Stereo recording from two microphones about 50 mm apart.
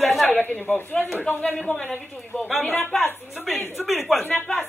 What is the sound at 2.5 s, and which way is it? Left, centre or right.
Speech, centre.